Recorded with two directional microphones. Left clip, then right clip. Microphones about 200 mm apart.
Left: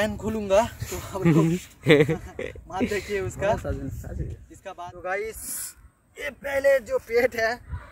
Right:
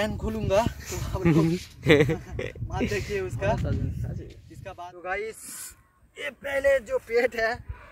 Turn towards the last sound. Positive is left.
turn(degrees=5)  # may be behind; listen again after turning